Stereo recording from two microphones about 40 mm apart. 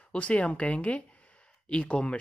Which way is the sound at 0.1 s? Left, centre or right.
Left.